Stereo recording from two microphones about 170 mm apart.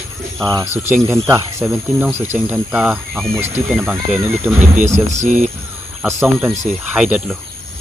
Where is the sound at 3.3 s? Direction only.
15° right (ahead or behind).